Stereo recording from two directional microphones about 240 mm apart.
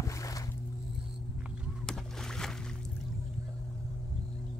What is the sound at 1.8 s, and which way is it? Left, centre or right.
Boat, centre.